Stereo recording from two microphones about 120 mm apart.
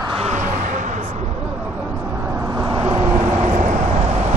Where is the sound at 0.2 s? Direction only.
85° right.